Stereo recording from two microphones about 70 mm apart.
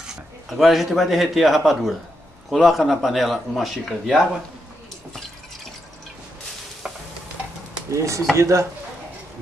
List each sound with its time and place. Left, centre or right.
0.5 s a man's voice: centre
7.9 s speech: right